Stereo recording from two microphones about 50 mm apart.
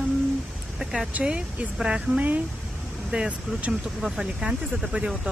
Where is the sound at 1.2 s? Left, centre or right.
Centre.